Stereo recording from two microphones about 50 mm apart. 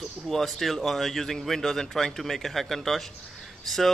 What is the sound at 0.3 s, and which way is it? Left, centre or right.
Speech, centre.